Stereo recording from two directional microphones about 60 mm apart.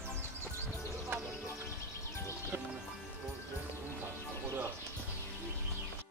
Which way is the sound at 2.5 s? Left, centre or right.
Right.